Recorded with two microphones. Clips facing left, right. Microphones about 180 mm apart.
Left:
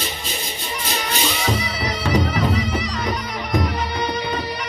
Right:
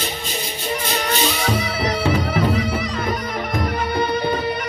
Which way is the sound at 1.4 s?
55° right (ahead or behind).